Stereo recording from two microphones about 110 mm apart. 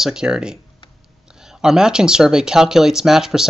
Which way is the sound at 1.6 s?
5° right (ahead or behind).